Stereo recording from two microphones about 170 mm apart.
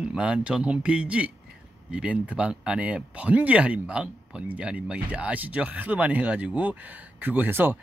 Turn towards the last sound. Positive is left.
turn(degrees=-10)  # may be behind; listen again after turning